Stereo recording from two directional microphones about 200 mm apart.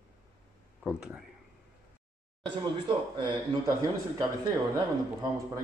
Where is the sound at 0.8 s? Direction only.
5° right (ahead or behind).